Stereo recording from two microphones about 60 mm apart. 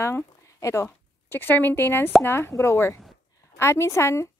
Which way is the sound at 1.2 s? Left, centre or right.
Left.